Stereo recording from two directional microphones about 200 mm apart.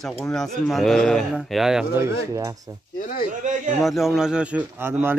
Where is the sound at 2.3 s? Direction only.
15° right (ahead or behind).